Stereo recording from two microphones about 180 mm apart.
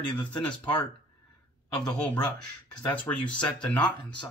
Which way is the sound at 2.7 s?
10° left (ahead or behind).